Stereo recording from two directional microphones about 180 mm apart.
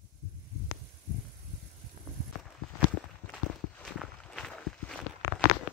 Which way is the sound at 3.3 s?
5° left (ahead or behind).